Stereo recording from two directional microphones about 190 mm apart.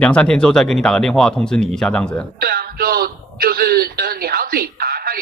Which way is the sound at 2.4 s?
55° right (ahead or behind).